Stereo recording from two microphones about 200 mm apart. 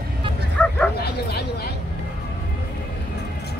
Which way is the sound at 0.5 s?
5° left (ahead or behind).